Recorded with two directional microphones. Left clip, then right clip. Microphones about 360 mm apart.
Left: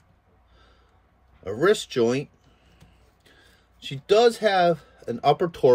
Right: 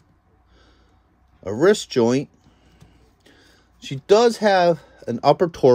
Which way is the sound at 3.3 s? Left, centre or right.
Centre.